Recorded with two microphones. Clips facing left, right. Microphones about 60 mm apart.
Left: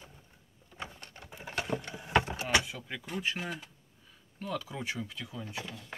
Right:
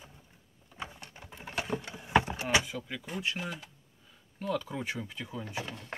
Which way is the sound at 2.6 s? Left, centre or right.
Centre.